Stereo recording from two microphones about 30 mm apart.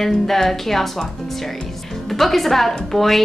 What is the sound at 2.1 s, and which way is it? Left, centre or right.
A woman's voice, centre.